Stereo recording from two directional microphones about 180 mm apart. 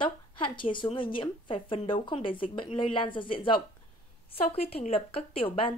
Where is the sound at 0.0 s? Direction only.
25° left (ahead or behind).